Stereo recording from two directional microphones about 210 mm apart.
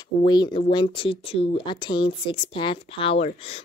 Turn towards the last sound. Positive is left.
turn(degrees=30)  # may be behind; listen again after turning